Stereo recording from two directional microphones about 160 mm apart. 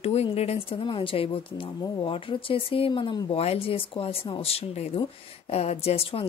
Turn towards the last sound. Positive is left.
turn(degrees=35)  # may be behind; listen again after turning